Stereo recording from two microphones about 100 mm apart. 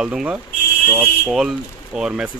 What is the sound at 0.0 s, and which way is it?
Speech, 10° right (ahead or behind).